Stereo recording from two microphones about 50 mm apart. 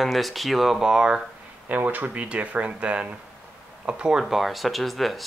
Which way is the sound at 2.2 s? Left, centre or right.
Right.